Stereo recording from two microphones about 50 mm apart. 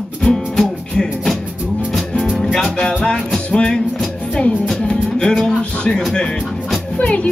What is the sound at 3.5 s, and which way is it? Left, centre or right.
Music, centre.